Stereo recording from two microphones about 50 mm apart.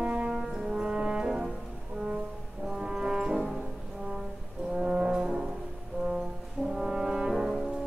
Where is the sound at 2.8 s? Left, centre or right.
Centre.